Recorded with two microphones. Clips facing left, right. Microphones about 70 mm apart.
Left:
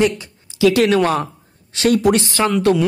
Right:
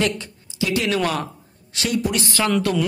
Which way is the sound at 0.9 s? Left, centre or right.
Left.